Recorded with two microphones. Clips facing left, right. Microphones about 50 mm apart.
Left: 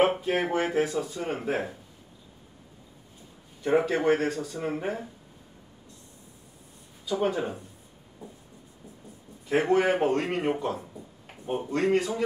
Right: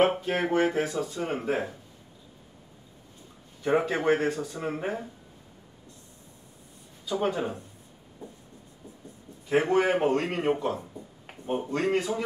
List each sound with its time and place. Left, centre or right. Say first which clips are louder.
0.0 s speech: even; centre
3.6 s speech: left 1 dB; centre
7.1 s speech: left 1 dB; centre
9.7 s speech: left 2 dB; centre